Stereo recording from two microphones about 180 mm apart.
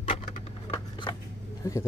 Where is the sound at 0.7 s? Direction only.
25° left (ahead or behind).